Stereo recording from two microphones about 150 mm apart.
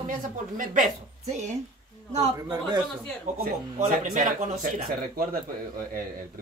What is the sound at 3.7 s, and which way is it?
Speech, 60° right (ahead or behind).